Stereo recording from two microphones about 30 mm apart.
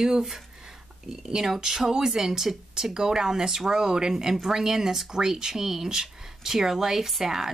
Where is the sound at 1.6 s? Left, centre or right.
Centre.